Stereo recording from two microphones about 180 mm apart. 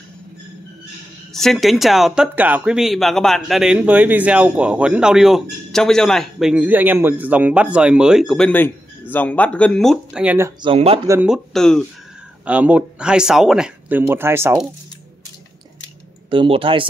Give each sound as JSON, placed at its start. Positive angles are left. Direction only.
{"t": 1.3, "sound": "speech", "side_deg": 0}
{"t": 10.6, "sound": "speech", "side_deg": -30}
{"t": 11.1, "sound": "speech", "side_deg": -5}
{"t": 16.3, "sound": "speech", "side_deg": -30}